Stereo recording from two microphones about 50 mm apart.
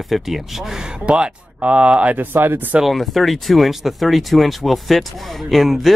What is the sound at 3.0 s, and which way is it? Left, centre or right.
Speech, centre.